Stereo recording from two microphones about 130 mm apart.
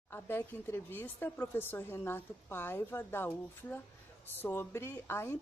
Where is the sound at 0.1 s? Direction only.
15° left (ahead or behind).